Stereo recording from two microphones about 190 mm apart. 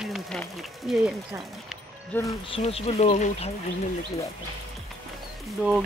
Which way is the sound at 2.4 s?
30° left (ahead or behind).